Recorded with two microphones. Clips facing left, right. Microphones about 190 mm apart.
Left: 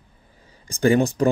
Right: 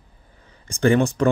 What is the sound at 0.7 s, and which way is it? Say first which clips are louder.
Speech: even; 35° left (ahead or behind).